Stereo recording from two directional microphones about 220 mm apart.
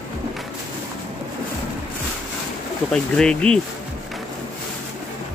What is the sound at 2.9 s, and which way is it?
Speech, 5° left (ahead or behind).